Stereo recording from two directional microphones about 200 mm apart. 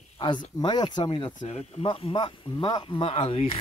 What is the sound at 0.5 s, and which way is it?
Speech, 20° left (ahead or behind).